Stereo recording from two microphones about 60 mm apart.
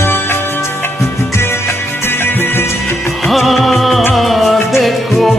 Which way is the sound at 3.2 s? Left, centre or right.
Centre.